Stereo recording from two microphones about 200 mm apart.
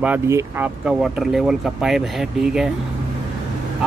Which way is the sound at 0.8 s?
Centre (ahead or behind).